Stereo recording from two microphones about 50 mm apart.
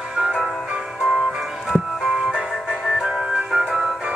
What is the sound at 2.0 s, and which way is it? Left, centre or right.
Music, centre.